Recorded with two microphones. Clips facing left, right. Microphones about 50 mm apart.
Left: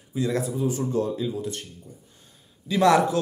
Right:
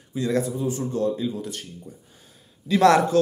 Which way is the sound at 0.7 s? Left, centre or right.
Left.